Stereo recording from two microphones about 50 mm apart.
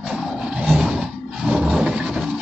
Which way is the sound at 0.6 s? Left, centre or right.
Centre.